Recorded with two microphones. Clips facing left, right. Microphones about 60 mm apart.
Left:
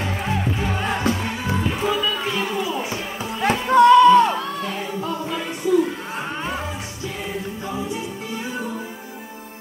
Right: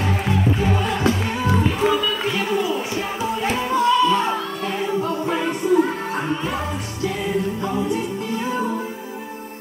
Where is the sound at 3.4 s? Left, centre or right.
Left.